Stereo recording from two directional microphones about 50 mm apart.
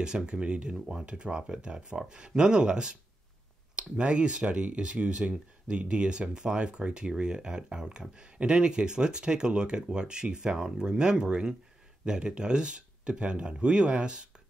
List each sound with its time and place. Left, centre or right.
0.0 s speech: centre